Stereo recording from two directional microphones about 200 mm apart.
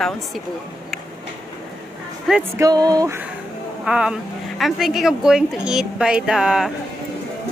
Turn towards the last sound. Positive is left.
turn(degrees=0)  # may be behind; listen again after turning